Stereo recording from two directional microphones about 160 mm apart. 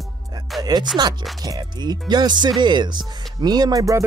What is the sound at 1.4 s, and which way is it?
Speech, 25° right (ahead or behind).